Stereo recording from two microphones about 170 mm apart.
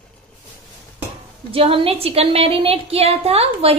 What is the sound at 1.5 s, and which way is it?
A woman's voice, 30° right (ahead or behind).